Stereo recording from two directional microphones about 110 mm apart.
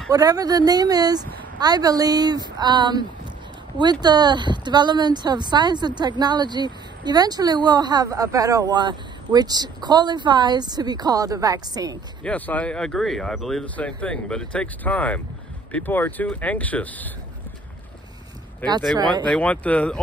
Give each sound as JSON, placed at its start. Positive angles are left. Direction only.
{"t": 0.1, "sound": "speech", "side_deg": -35}
{"t": 12.2, "sound": "speech", "side_deg": 15}
{"t": 19.2, "sound": "speech", "side_deg": 10}